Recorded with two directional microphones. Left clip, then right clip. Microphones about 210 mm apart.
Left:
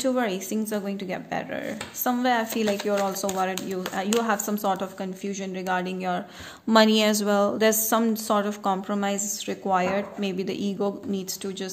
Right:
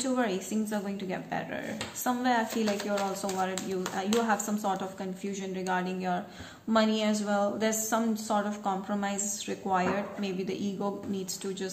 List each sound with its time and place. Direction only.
0.0 s a woman's voice: 45° left (ahead or behind)